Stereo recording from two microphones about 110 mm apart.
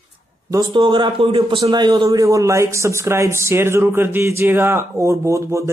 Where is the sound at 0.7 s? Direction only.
50° right (ahead or behind).